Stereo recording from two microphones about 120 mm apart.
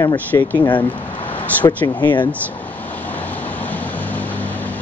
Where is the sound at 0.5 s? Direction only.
40° left (ahead or behind).